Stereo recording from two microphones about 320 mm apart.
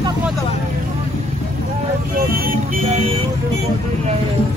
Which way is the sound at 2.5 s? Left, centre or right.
Centre.